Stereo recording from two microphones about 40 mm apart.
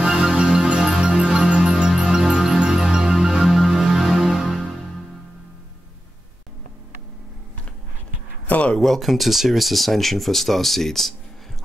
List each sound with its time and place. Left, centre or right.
0.0 s music: centre
3.4 s music: centre
3.7 s music: centre
4.2 s music: right
8.5 s a sound: left
8.7 s speech: centre